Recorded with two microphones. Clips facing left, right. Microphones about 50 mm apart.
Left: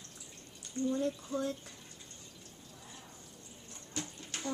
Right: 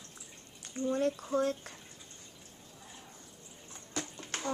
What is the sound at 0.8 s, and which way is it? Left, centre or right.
Speech, right.